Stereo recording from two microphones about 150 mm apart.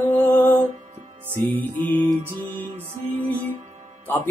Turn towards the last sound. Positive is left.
turn(degrees=15)  # may be behind; listen again after turning